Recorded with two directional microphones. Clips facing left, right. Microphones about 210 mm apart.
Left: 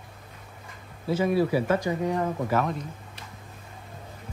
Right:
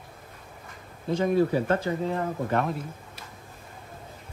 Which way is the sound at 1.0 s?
5° left (ahead or behind).